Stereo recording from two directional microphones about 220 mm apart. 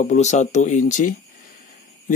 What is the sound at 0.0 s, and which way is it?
Speech, 30° left (ahead or behind).